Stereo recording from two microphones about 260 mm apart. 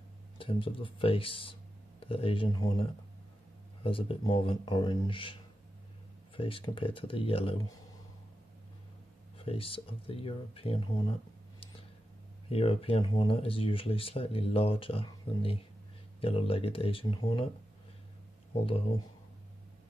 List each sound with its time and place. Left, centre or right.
0.4 s speech: centre
9.4 s speech: left
12.4 s speech: left
18.6 s speech: left